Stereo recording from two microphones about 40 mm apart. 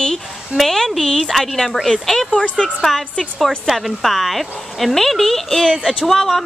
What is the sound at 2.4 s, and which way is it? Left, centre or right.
Speech, left.